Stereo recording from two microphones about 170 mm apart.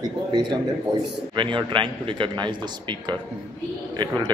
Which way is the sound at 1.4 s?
30° right (ahead or behind).